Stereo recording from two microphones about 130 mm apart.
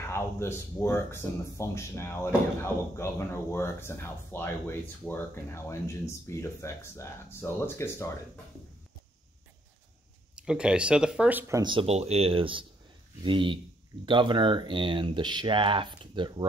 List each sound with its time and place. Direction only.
0.1 s speech: 20° left (ahead or behind)
10.3 s speech: 5° right (ahead or behind)
11.6 s speech: 45° right (ahead or behind)